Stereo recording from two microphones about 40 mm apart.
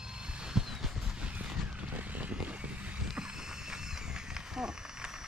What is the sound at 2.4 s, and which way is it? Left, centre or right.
Vehicle, right.